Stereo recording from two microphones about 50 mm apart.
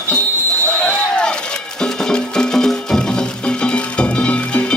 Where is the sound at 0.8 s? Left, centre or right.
Centre.